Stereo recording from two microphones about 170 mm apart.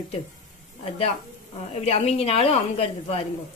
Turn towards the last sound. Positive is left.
turn(degrees=35)  # may be behind; listen again after turning